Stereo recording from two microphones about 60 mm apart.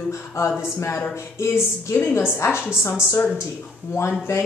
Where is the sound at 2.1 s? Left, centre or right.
Left.